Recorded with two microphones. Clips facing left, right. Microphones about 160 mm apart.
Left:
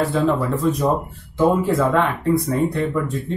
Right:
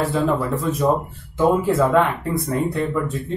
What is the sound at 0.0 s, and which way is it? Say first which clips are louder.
Speech: left 1 dB; centre (ahead or behind).